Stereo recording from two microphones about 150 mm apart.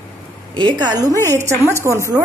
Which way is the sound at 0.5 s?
30° right (ahead or behind).